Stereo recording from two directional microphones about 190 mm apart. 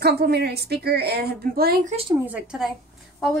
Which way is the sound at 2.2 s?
5° right (ahead or behind).